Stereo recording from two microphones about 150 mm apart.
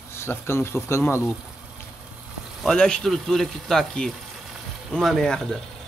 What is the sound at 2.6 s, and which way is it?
Speech, 5° left (ahead or behind).